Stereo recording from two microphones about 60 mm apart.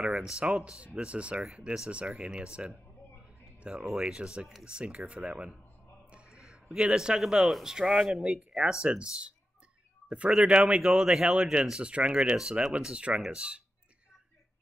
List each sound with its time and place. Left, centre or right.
0.0 s speech: centre
3.8 s speech: centre
10.8 s speech: centre
11.8 s speech: centre